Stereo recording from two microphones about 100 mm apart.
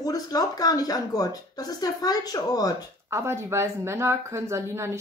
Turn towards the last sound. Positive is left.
turn(degrees=-30)  # may be behind; listen again after turning